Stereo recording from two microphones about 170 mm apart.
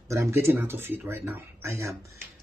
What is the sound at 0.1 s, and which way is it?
Speech, 15° right (ahead or behind).